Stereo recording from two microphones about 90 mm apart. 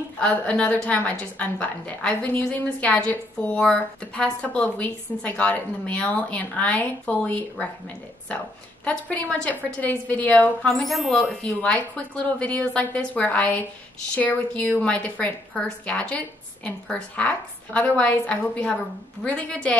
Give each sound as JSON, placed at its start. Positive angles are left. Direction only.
{"t": 0.2, "sound": "a woman's voice", "side_deg": 15}
{"t": 8.8, "sound": "a woman's voice", "side_deg": 15}
{"t": 10.7, "sound": "speech", "side_deg": 0}
{"t": 11.4, "sound": "a woman's voice", "side_deg": 15}